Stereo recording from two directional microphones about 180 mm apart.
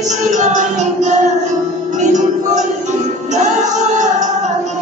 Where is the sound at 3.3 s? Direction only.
40° right (ahead or behind).